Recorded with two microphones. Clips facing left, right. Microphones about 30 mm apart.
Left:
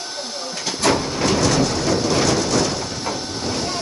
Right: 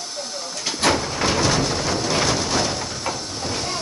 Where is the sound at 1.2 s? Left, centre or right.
Centre.